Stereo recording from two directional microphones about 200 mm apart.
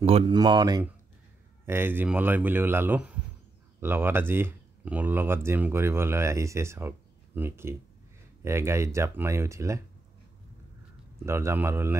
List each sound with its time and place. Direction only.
0.0 s speech: 25° right (ahead or behind)
11.2 s speech: 15° right (ahead or behind)